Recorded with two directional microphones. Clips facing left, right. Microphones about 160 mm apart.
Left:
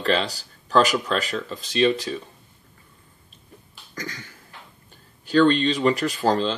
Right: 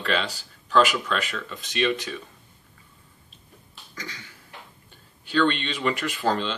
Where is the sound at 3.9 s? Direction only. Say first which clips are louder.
Left 5 dB; 45° left (ahead or behind).